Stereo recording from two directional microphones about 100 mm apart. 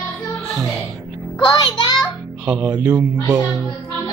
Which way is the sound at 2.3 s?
10° right (ahead or behind).